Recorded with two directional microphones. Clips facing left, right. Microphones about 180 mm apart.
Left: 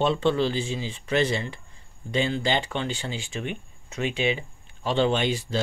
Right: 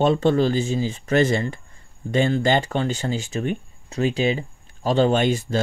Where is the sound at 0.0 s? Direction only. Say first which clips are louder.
Right 5 dB; 45° right (ahead or behind).